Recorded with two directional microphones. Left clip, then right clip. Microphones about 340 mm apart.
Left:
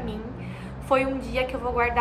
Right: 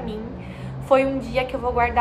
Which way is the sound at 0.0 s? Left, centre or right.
Centre.